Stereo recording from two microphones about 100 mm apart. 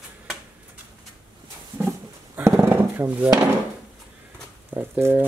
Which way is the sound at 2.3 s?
25° right (ahead or behind).